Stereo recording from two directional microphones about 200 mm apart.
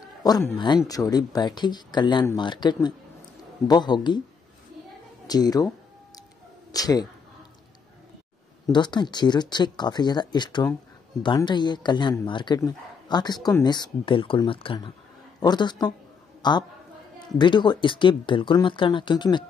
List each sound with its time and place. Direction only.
0.2 s a man's voice: 15° left (ahead or behind)
5.2 s speech: 20° left (ahead or behind)
6.7 s speech: 20° left (ahead or behind)
8.6 s a man's voice: 20° left (ahead or behind)